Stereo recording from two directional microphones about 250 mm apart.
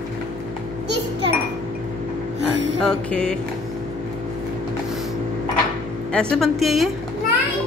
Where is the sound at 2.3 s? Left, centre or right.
Right.